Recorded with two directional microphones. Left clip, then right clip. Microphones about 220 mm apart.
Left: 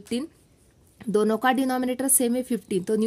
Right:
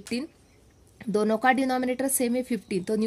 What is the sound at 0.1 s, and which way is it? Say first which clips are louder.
A woman's voice: left 3 dB; 25° left (ahead or behind).